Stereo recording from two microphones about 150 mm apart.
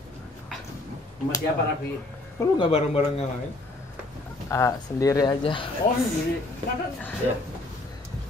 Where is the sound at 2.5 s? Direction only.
35° left (ahead or behind).